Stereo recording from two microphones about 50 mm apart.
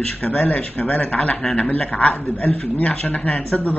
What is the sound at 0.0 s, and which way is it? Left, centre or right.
A man's voice, left.